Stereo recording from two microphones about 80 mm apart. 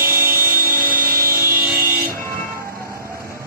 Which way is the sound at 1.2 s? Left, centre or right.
Right.